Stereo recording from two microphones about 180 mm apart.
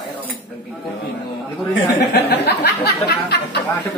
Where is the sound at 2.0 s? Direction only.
65° left (ahead or behind).